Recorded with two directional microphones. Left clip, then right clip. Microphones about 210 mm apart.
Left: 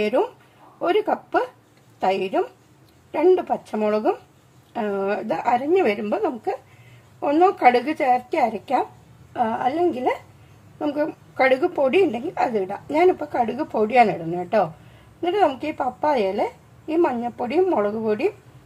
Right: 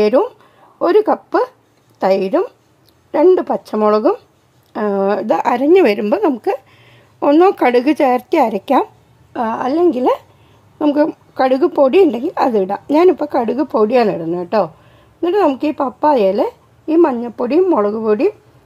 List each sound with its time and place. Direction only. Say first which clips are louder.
0.0 s a woman's voice: right 8 dB; 40° right (ahead or behind)